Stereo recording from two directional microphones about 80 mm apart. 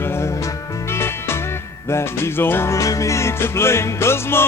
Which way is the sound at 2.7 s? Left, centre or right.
Left.